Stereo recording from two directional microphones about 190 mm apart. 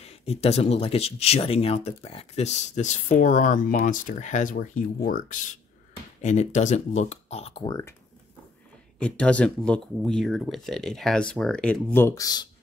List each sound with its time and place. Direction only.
0.0 s speech: 30° left (ahead or behind)
9.0 s speech: 5° left (ahead or behind)